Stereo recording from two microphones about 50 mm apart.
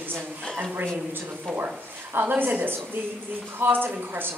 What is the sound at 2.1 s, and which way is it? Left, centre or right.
A woman's voice, right.